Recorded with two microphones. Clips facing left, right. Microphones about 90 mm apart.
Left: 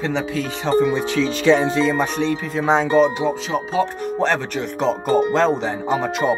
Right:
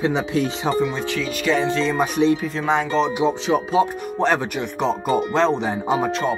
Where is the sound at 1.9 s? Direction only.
10° right (ahead or behind).